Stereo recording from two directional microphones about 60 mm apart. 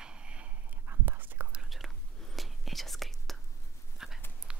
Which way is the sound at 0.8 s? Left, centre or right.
Right.